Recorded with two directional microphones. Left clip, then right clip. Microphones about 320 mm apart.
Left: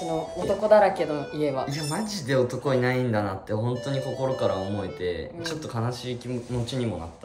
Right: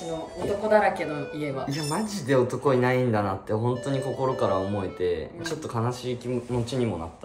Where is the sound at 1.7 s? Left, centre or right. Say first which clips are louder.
Right 1 dB; centre.